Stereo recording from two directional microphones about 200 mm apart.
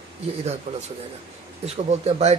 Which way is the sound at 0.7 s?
30° right (ahead or behind).